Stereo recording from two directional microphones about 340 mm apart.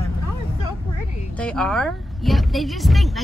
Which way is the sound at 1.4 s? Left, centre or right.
Centre.